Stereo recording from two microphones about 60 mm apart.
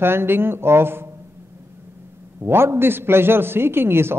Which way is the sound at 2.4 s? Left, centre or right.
Right.